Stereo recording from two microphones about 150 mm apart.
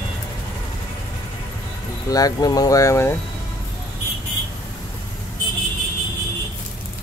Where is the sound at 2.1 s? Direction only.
25° left (ahead or behind).